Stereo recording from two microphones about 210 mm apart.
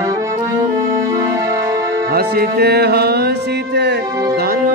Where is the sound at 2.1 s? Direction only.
45° right (ahead or behind).